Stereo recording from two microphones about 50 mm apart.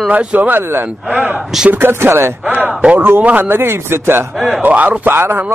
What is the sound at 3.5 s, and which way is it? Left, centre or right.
Speech, right.